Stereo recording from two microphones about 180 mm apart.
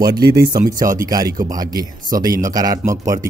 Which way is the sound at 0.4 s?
20° right (ahead or behind).